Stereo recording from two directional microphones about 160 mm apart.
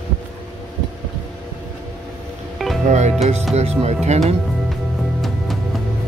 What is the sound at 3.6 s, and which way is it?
Speech, 40° right (ahead or behind).